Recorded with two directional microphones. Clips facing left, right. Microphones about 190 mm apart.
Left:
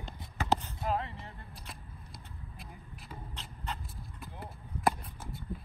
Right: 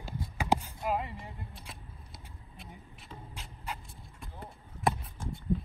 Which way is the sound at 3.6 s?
10° right (ahead or behind).